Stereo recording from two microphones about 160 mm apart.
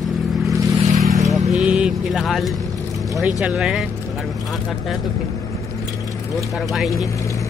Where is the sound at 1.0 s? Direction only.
50° right (ahead or behind).